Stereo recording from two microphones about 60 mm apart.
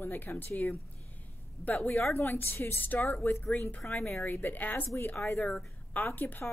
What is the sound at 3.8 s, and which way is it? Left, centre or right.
Speech, left.